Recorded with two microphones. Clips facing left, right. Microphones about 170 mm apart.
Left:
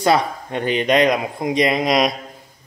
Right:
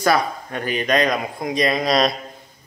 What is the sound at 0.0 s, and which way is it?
Speech, 25° left (ahead or behind).